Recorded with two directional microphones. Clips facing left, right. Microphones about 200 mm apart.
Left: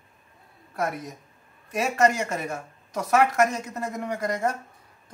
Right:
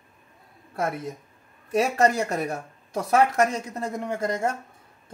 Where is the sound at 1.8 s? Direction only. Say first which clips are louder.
Right 1 dB; 35° right (ahead or behind).